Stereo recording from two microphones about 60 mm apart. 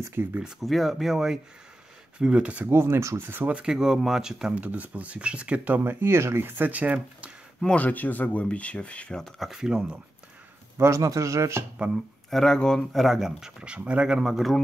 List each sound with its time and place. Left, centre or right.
0.1 s speech: right
0.6 s speech: centre
2.1 s speech: centre
2.7 s speech: right
3.4 s speech: centre
4.6 s speech: right
5.9 s speech: right
7.7 s speech: left
9.5 s speech: centre
10.8 s speech: right
11.9 s speech: centre